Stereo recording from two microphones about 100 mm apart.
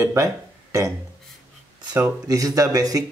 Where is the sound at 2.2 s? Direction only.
35° right (ahead or behind).